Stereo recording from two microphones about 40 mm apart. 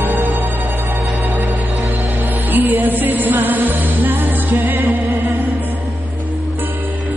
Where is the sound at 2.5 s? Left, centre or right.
Right.